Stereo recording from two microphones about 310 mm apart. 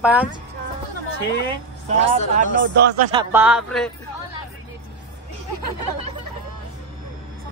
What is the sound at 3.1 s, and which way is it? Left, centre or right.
Speech, centre.